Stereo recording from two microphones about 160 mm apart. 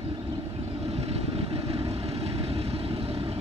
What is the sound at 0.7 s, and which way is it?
Vehicle, 40° right (ahead or behind).